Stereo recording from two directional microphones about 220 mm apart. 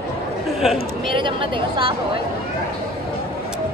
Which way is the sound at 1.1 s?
25° right (ahead or behind).